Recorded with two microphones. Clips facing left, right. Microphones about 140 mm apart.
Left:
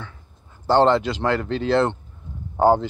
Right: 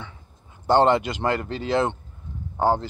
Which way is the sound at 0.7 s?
10° right (ahead or behind).